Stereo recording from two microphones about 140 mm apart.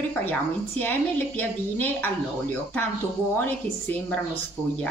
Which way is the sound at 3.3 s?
15° left (ahead or behind).